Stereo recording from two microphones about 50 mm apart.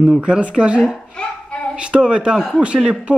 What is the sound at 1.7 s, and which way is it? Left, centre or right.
Speech, centre.